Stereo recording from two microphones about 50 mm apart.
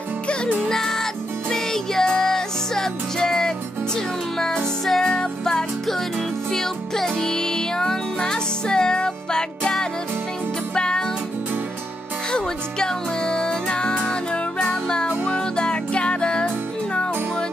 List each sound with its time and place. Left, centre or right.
0.7 s music: centre
12.3 s music: centre